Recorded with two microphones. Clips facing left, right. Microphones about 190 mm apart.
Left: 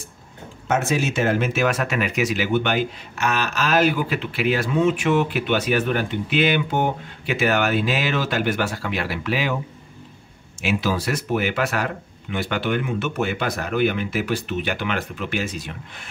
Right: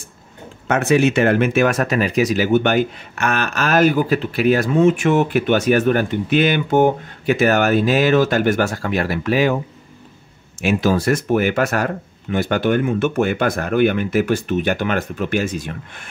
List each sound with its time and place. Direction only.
0.7 s speech: 65° right (ahead or behind); by 9.6 s 45° right (ahead or behind)
10.6 s speech: 45° right (ahead or behind)